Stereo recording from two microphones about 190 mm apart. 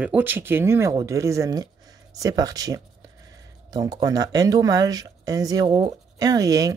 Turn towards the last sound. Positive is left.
turn(degrees=-20)  # may be behind; listen again after turning